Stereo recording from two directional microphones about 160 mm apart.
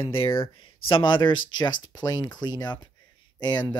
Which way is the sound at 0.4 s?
35° left (ahead or behind).